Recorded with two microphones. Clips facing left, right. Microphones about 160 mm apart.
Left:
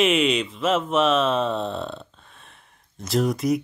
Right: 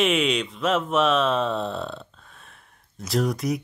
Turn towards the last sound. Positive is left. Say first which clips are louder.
# left 3 dB
turn(degrees=0)  # may be behind; listen again after turning